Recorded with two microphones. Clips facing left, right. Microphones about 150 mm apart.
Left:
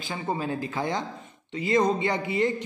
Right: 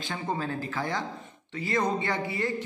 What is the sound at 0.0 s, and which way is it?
A man's voice, 10° left (ahead or behind).